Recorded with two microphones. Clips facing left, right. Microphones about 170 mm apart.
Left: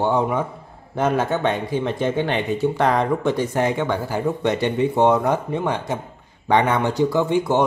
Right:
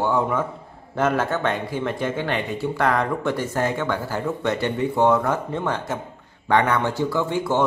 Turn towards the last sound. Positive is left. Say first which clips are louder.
# left 3 dB
turn(degrees=20)  # may be behind; listen again after turning